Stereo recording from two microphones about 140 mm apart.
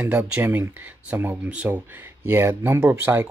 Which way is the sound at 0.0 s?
10° right (ahead or behind).